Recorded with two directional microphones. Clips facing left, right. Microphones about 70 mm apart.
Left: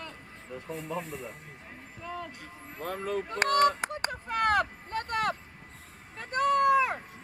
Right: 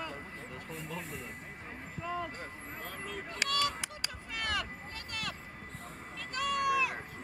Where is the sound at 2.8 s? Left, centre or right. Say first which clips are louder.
Left 11 dB; left.